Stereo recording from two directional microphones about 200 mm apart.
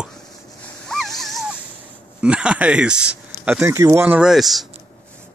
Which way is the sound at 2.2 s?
5° right (ahead or behind).